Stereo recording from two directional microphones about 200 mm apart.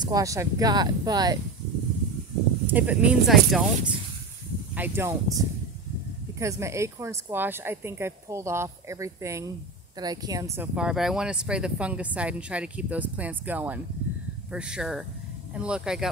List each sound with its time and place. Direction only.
0.0 s speech: 15° right (ahead or behind)
2.6 s speech: 10° right (ahead or behind)
6.4 s speech: 15° right (ahead or behind)